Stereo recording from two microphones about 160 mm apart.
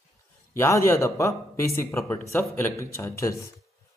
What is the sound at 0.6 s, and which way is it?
Speech, 20° left (ahead or behind).